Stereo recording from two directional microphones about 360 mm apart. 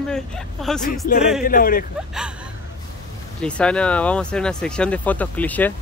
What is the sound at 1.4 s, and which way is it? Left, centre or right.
Speech, left.